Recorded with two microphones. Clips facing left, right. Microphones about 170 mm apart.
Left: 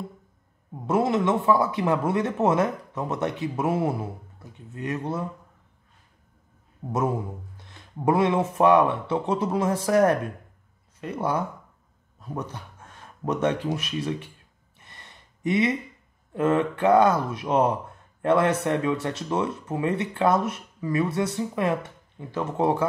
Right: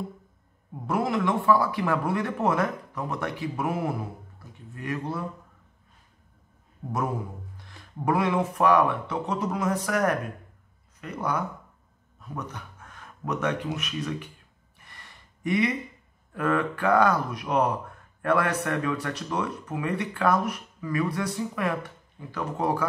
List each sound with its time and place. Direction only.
0.8 s speech: 20° left (ahead or behind)
7.5 s speech: 25° left (ahead or behind)
14.8 s gasp: 20° left (ahead or behind)
16.3 s speech: 25° left (ahead or behind)